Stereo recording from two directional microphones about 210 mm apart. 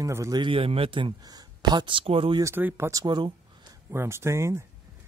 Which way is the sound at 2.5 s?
10° right (ahead or behind).